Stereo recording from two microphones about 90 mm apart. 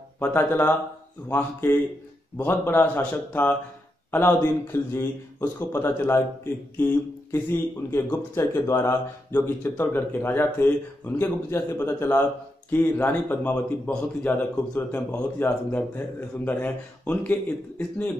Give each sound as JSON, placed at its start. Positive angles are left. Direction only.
{"t": 0.2, "sound": "a man's voice", "side_deg": 25}